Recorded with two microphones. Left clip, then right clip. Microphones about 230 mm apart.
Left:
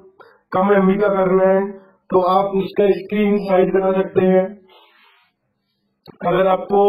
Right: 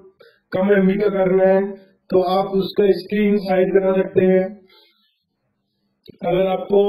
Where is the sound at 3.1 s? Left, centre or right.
Centre.